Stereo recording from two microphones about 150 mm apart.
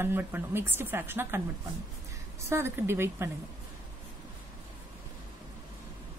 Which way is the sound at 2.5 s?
15° right (ahead or behind).